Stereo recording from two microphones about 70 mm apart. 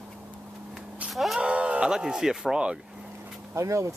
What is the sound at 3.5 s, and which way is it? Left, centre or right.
Speech, right.